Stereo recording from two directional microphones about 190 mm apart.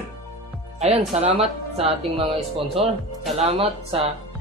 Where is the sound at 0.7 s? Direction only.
35° right (ahead or behind).